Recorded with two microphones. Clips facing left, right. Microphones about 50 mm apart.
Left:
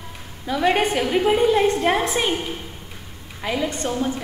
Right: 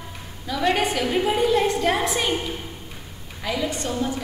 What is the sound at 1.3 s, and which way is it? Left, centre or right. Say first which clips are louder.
Speech: left 3 dB; left.